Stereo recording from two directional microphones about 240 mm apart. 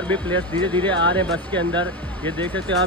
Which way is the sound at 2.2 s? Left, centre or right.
Centre.